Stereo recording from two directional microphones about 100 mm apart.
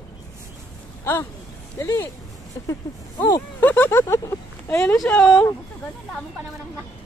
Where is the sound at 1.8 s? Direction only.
30° left (ahead or behind).